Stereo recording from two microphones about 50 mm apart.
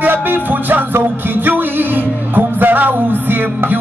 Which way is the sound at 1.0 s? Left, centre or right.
Right.